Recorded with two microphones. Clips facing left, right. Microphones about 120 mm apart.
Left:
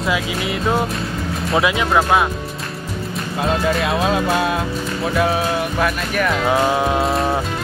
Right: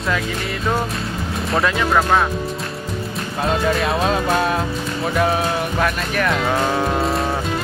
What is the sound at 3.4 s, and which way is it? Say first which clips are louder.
Speech: even; centre (ahead or behind).